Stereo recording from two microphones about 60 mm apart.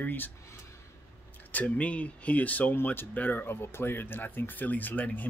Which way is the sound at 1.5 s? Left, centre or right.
Left.